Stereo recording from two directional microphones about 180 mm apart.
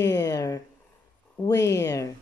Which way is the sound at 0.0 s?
20° left (ahead or behind).